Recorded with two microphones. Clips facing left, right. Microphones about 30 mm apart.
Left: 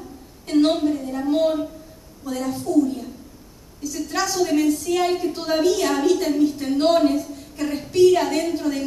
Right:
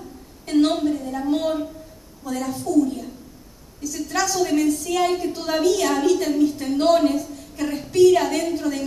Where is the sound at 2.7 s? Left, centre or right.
Left.